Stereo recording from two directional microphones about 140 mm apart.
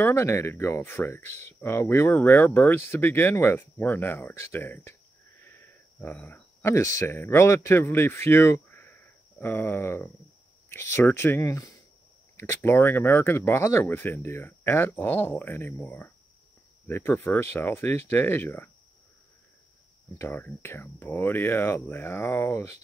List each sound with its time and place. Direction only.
0.0 s speech: 15° left (ahead or behind)
20.2 s speech: 15° left (ahead or behind)